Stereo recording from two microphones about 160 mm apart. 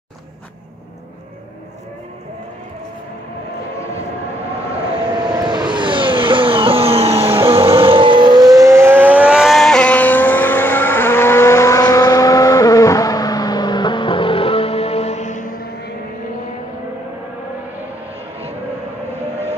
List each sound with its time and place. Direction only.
5.5 s vehicle: 30° right (ahead or behind); by 15.9 s 65° left (ahead or behind)